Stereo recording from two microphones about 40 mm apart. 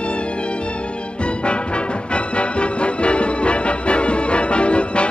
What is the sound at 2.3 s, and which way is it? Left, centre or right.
Music, left.